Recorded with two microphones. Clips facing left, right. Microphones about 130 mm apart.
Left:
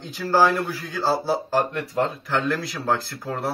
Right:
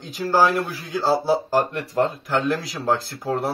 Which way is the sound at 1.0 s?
10° right (ahead or behind).